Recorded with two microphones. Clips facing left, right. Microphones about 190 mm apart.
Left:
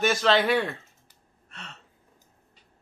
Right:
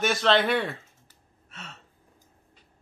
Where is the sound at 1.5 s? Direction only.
5° right (ahead or behind).